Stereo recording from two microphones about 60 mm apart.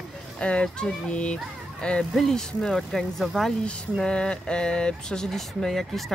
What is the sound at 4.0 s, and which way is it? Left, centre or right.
Speech, centre.